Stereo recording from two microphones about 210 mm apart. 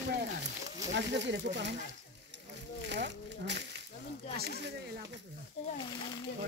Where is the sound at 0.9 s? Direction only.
55° right (ahead or behind).